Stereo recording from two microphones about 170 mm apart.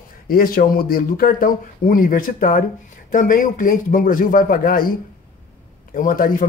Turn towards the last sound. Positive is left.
turn(degrees=55)  # may be behind; listen again after turning